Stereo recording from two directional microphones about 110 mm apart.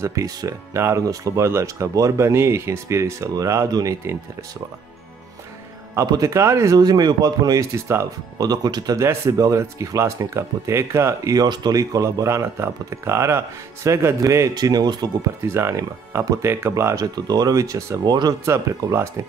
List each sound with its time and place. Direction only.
0.0 s speech: 30° right (ahead or behind)
6.0 s a man's voice: 35° right (ahead or behind)
7.7 s speech: 25° right (ahead or behind)
8.4 s a man's voice: 35° right (ahead or behind)
11.4 s a man's voice: 40° right (ahead or behind)
15.4 s speech: 20° right (ahead or behind)